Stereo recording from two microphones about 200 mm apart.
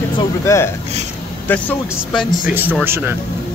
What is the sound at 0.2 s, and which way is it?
Speech, 15° left (ahead or behind).